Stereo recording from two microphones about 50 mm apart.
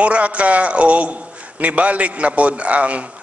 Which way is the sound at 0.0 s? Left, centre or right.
Right.